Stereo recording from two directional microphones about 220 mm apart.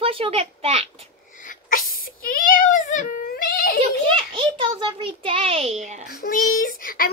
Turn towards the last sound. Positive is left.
turn(degrees=40)  # may be behind; listen again after turning